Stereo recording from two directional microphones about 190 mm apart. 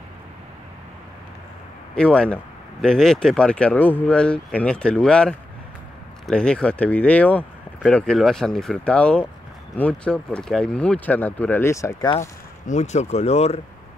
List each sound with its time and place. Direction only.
2.0 s speech: 5° left (ahead or behind)
12.6 s speech: 40° left (ahead or behind)